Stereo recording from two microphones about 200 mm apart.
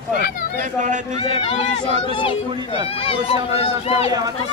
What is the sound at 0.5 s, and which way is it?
Speech, 40° right (ahead or behind).